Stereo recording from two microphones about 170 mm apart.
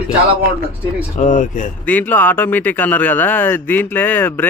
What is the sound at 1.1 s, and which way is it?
Speech, 45° left (ahead or behind).